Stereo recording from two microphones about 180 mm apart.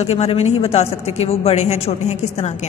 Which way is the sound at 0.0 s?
35° left (ahead or behind).